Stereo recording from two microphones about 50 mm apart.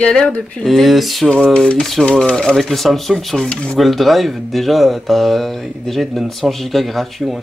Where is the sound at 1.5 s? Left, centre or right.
Left.